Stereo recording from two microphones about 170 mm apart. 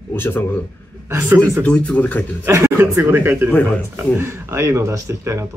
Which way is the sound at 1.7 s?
10° left (ahead or behind).